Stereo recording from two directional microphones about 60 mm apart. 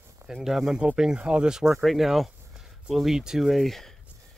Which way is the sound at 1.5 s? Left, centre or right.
Centre.